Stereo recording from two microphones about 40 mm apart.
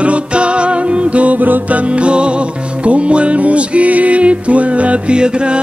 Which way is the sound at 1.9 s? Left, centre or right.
Right.